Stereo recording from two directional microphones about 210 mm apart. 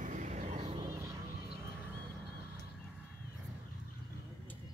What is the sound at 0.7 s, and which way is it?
Music, 20° right (ahead or behind).